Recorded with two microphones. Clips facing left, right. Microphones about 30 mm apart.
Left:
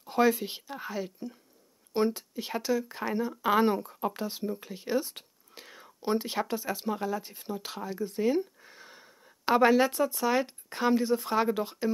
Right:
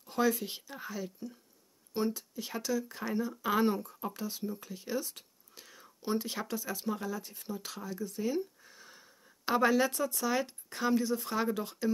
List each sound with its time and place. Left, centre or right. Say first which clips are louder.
0.0 s speech: left 5 dB; left